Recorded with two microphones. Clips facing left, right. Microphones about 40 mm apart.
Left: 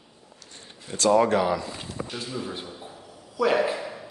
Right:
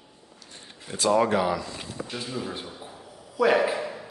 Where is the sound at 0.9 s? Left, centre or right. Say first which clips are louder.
Left 2 dB; centre.